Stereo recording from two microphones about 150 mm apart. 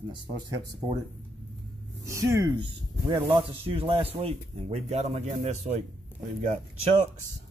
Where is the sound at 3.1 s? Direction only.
35° right (ahead or behind); by 5.8 s 50° right (ahead or behind).